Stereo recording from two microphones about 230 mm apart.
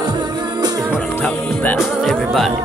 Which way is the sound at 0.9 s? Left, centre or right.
Centre.